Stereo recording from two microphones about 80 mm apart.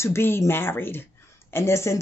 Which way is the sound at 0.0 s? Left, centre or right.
Left.